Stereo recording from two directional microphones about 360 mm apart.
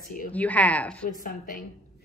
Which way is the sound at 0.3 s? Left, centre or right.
Centre.